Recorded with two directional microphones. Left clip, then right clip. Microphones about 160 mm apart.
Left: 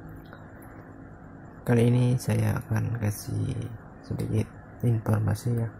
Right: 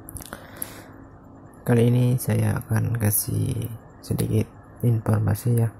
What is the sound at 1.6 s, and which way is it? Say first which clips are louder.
Speech: right 3 dB; 15° right (ahead or behind).